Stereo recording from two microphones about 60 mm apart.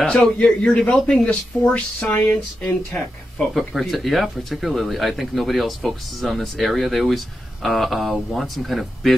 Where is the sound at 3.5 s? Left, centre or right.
Centre.